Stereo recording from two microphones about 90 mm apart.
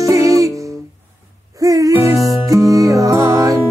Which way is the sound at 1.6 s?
40° right (ahead or behind).